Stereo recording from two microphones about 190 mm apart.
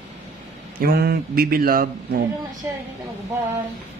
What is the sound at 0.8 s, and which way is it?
A man's voice, 50° right (ahead or behind).